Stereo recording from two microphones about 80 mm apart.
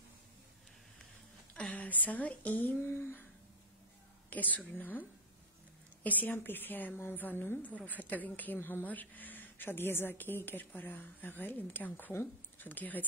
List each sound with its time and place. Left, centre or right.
1.5 s speech: centre
4.3 s a woman's voice: left
6.0 s a woman's voice: left